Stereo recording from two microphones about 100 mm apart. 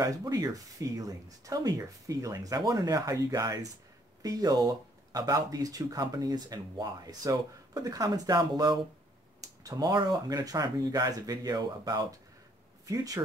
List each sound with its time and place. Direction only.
0.0 s speech: 40° right (ahead or behind)